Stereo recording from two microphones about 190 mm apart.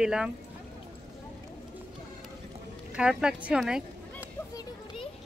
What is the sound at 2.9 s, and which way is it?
Speech, 5° right (ahead or behind).